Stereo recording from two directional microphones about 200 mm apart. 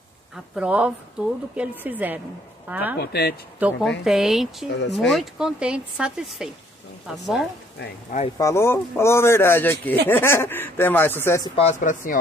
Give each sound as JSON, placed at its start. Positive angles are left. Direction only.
{"t": 0.6, "sound": "speech", "side_deg": -5}
{"t": 3.0, "sound": "speech", "side_deg": 50}
{"t": 3.5, "sound": "speech", "side_deg": -5}
{"t": 8.4, "sound": "speech", "side_deg": 15}
{"t": 11.5, "sound": "speech", "side_deg": 35}